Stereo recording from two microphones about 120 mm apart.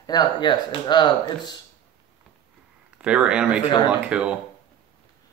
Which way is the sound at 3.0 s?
10° right (ahead or behind).